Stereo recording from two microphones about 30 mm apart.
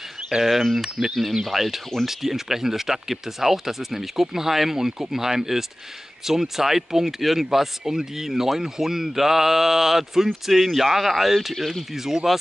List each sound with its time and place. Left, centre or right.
0.4 s speech: centre